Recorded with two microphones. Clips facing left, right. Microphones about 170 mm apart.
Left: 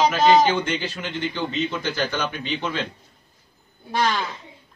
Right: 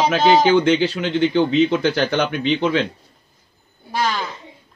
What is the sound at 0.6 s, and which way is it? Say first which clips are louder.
A man's voice: right 10 dB; 80° right.